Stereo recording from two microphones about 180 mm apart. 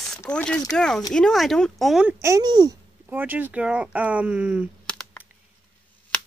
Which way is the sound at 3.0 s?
10° right (ahead or behind).